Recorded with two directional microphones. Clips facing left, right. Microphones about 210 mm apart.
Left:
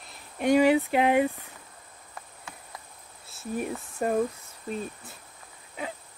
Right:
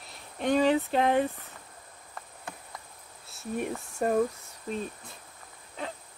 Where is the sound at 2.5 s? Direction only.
55° right (ahead or behind).